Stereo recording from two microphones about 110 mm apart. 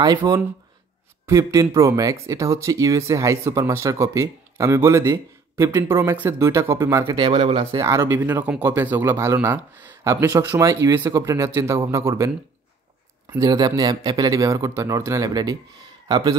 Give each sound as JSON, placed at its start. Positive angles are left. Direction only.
{"t": 0.0, "sound": "speech", "side_deg": -35}
{"t": 7.2, "sound": "speech", "side_deg": -65}
{"t": 7.7, "sound": "speech", "side_deg": -25}
{"t": 13.5, "sound": "a man's voice", "side_deg": -40}